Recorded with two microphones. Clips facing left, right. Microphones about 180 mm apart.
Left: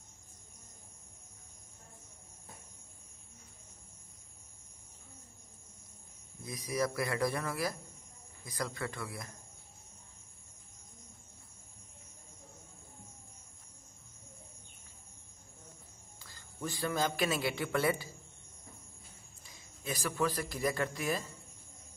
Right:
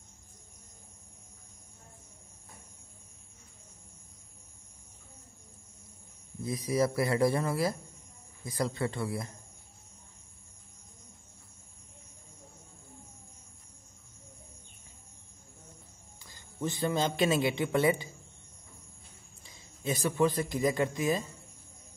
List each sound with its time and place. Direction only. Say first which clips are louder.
6.4 s speech: right 6 dB; 30° right (ahead or behind)
16.3 s a man's voice: right 6 dB; 20° right (ahead or behind)
19.4 s a man's voice: right 7 dB; 25° right (ahead or behind)